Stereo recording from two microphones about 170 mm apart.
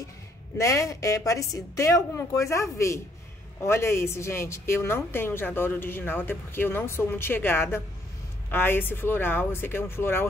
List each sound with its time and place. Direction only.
0.6 s a woman's voice: 20° left (ahead or behind)